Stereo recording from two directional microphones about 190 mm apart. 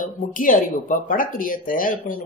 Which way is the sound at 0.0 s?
45° left (ahead or behind).